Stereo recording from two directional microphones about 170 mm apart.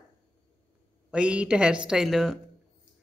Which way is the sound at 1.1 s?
5° right (ahead or behind).